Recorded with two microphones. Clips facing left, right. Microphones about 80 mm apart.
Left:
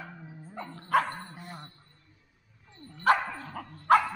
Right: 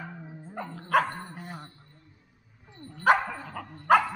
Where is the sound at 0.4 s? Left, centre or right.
Right.